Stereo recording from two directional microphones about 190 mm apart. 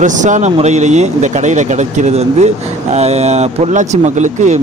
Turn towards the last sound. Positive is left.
turn(degrees=-40)  # may be behind; listen again after turning